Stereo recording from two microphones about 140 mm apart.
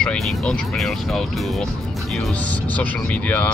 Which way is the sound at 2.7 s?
10° left (ahead or behind).